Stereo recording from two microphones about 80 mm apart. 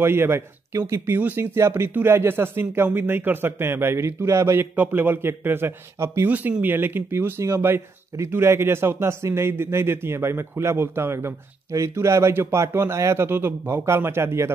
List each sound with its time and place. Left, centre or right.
0.0 s speech: right
4.7 s speech: right
6.2 s speech: centre